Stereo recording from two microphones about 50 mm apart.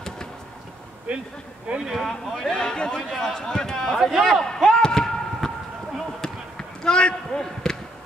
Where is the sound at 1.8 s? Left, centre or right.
Centre.